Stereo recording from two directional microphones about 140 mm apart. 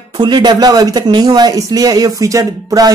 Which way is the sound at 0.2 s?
30° right (ahead or behind).